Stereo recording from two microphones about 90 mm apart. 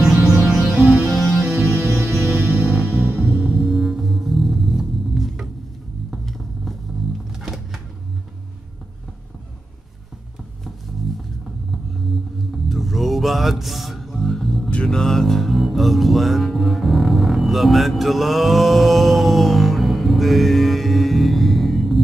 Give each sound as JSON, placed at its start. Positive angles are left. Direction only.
{"t": 0.5, "sound": "music", "side_deg": -5}
{"t": 0.7, "sound": "music", "side_deg": -25}
{"t": 3.6, "sound": "music", "side_deg": 0}
{"t": 6.0, "sound": "vehicle", "side_deg": 0}
{"t": 7.3, "sound": "a sound", "side_deg": -5}
{"t": 12.6, "sound": "a sound", "side_deg": 0}